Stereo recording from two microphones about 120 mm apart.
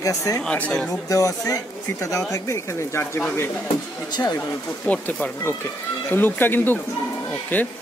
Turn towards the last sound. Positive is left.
turn(degrees=15)  # may be behind; listen again after turning